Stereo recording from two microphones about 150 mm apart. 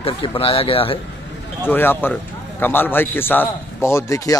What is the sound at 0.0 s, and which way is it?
Speech, 35° left (ahead or behind).